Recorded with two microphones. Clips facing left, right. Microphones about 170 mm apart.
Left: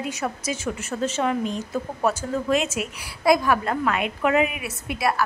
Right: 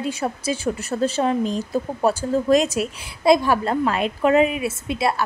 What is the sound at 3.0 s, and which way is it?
A woman's voice, 25° right (ahead or behind).